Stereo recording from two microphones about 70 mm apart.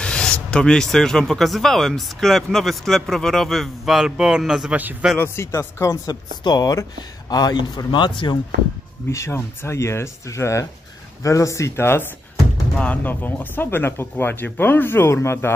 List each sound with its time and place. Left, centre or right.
0.0 s speech: centre
4.6 s a man's voice: right
5.2 s speech: left
6.0 s a man's voice: left
9.1 s speech: left
12.7 s speech: centre; by 15.5 s left